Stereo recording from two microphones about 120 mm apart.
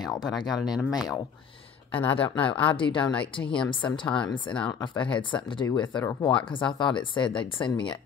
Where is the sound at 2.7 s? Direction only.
45° left (ahead or behind).